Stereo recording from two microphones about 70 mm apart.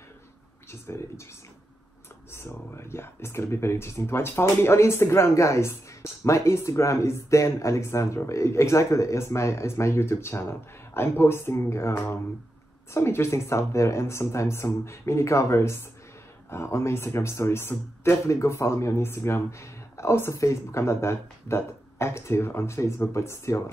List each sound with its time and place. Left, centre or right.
0.7 s speech: left
2.3 s speech: left